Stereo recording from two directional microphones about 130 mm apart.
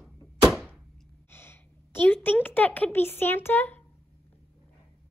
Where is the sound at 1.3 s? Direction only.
20° left (ahead or behind).